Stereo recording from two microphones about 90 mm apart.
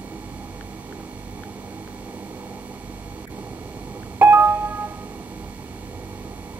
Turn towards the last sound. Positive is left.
turn(degrees=-25)  # may be behind; listen again after turning